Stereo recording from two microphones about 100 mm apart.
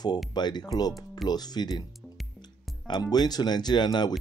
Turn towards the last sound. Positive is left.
turn(degrees=45)  # may be behind; listen again after turning